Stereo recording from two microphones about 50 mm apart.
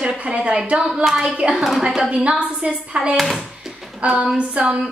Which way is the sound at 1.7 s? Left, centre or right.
Centre.